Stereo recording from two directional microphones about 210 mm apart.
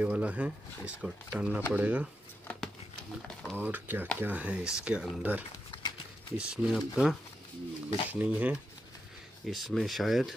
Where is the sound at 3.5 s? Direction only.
10° right (ahead or behind).